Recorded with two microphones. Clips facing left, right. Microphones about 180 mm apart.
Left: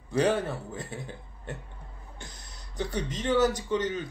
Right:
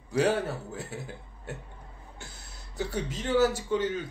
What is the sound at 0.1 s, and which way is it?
Speech, 10° right (ahead or behind).